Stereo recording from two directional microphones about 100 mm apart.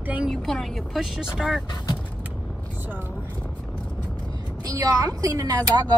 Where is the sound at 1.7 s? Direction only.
45° left (ahead or behind).